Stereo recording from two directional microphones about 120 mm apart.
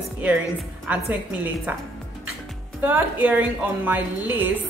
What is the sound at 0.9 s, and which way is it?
Speech, 10° right (ahead or behind).